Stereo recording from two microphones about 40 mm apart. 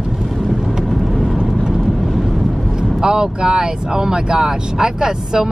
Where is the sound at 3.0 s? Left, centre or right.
Centre.